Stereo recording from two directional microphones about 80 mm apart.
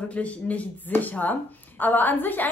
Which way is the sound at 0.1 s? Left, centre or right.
Centre.